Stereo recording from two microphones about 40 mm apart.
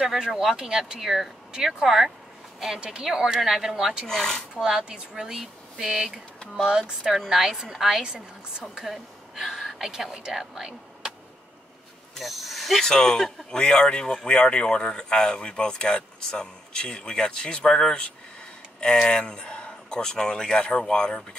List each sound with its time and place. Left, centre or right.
0.3 s speech: centre
4.1 s speech: centre
4.6 s a woman's voice: centre
12.2 s speech: centre
12.8 s speech: centre
19.0 s speech: left